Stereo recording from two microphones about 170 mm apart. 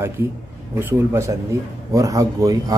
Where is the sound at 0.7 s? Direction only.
15° right (ahead or behind).